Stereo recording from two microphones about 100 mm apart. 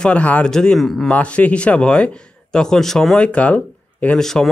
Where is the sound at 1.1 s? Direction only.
15° left (ahead or behind).